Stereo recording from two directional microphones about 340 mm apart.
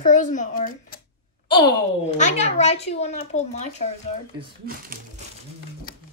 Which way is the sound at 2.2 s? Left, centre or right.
Centre.